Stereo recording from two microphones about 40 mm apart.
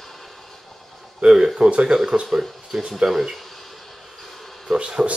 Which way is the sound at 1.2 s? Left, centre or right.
Centre.